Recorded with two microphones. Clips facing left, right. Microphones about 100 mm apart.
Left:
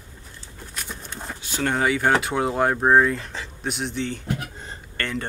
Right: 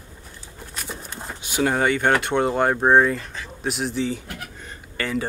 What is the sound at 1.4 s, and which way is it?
Speech, 10° right (ahead or behind).